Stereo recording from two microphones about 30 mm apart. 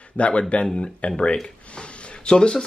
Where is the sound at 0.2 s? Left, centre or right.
Left.